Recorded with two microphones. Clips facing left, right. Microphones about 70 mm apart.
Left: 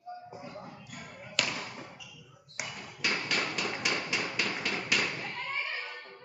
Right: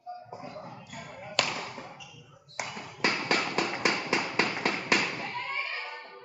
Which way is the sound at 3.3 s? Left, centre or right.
Right.